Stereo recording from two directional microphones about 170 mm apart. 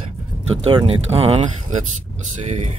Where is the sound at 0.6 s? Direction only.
30° right (ahead or behind).